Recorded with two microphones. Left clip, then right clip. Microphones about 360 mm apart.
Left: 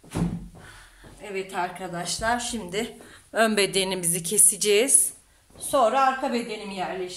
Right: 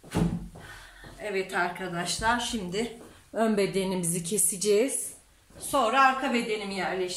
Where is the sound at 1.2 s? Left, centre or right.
Centre; by 4.9 s left.